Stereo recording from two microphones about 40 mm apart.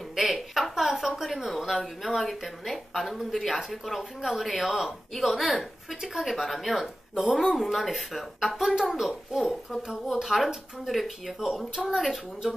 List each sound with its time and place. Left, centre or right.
0.1 s speech: centre
8.7 s speech: centre